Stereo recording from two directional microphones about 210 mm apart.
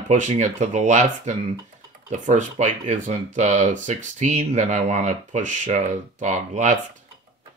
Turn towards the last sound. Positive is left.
turn(degrees=-35)  # may be behind; listen again after turning